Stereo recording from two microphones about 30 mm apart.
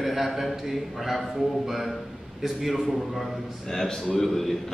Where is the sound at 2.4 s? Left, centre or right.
Centre.